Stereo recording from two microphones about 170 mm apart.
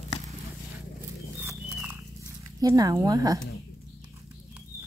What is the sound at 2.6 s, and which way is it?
Speech, 20° right (ahead or behind).